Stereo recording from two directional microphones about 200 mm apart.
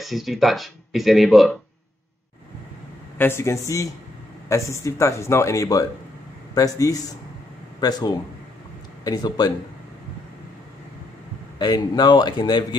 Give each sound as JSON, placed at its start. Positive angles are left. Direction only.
{"t": 0.0, "sound": "speech", "side_deg": 0}
{"t": 3.2, "sound": "a man's voice", "side_deg": 10}
{"t": 11.5, "sound": "a man's voice", "side_deg": 20}